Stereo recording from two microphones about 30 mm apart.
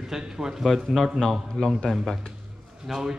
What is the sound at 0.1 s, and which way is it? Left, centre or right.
Speech, centre.